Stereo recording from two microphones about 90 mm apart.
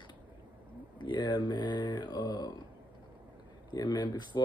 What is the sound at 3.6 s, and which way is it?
Speech, 50° left (ahead or behind).